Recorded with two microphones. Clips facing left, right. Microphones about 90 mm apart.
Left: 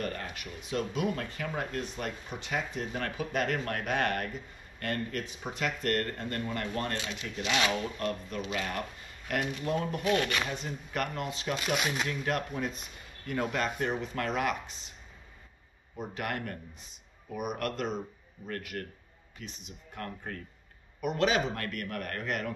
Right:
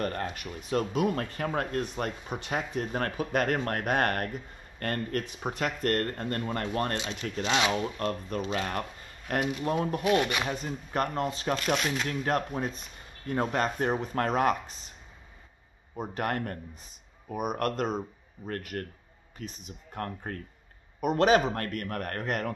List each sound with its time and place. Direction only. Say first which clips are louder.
0.0 s speech: right 4 dB; 40° right (ahead or behind)
10.0 s speech: right 3 dB; 15° right (ahead or behind)
10.5 s speech: right 4 dB; 40° right (ahead or behind)
11.5 s speech: right 1 dB; 10° left (ahead or behind)
12.1 s speech: right 3 dB; 35° right (ahead or behind)
16.0 s speech: right 4 dB; 40° right (ahead or behind)